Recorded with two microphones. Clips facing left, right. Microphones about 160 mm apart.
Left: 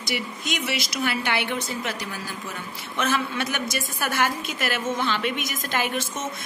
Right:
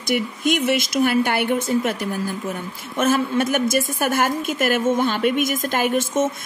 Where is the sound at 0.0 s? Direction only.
50° right (ahead or behind).